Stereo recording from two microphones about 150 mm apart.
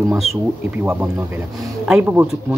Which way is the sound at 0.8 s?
10° right (ahead or behind).